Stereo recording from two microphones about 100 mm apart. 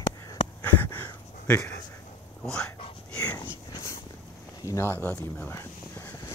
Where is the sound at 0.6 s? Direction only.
20° left (ahead or behind).